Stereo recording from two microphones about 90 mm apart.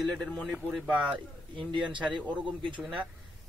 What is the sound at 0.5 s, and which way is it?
Speech, 10° right (ahead or behind).